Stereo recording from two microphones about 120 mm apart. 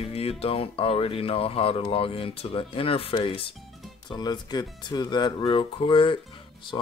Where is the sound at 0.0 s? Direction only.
55° left (ahead or behind).